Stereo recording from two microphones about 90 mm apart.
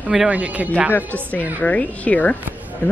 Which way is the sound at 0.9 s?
20° left (ahead or behind).